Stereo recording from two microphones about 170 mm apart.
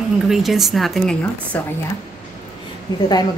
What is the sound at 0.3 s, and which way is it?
A woman's voice, centre (ahead or behind).